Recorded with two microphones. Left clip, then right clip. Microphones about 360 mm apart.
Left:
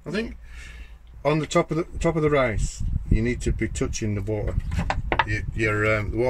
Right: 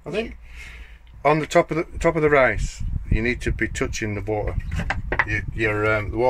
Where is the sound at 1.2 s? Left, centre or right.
Centre.